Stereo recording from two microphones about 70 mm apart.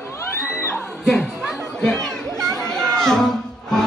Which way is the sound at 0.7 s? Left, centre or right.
Centre.